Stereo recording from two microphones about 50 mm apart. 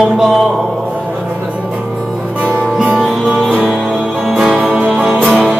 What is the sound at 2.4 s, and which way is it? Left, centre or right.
Music, right.